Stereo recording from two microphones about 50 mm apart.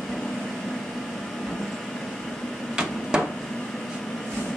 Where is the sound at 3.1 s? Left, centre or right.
Centre.